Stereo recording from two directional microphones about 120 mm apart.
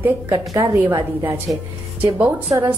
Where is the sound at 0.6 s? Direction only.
20° right (ahead or behind).